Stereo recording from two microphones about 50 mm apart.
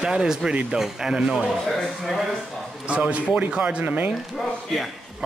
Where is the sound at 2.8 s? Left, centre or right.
Right.